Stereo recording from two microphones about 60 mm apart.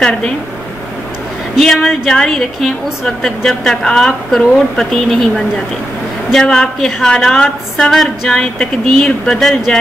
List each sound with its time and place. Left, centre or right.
1.6 s a woman's voice: centre